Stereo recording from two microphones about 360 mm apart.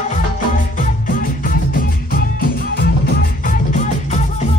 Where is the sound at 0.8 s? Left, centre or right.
Left.